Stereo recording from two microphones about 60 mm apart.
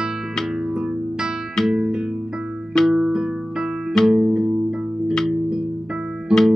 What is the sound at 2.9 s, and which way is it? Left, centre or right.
Music, centre.